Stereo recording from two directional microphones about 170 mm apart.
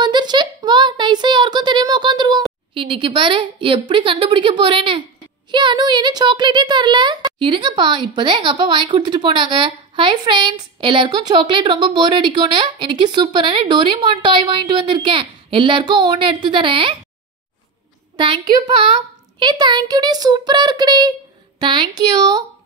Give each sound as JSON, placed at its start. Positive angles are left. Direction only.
{"t": 0.0, "sound": "a sound", "side_deg": -25}
{"t": 2.7, "sound": "speech", "side_deg": -30}
{"t": 18.1, "sound": "speech", "side_deg": -25}